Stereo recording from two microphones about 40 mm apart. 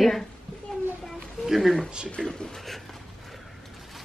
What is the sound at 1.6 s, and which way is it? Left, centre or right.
Speech, centre.